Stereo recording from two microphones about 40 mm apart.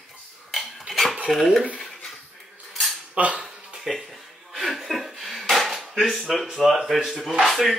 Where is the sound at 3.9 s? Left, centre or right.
Centre.